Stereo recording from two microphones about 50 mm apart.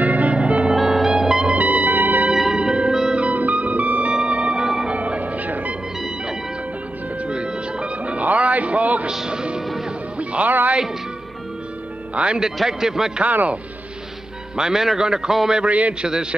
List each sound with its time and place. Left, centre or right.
0.0 s music: right
0.7 s music: centre
1.5 s music: right
2.3 s music: centre
3.2 s music: right
4.6 s music: centre
4.9 s music: right
7.2 s music: centre
9.1 s music: centre
12.2 s a man's voice: centre
13.2 s a man's voice: right
14.6 s a man's voice: centre
15.6 s a man's voice: right